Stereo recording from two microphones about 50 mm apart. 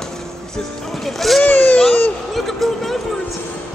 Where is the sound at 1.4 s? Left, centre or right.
Left.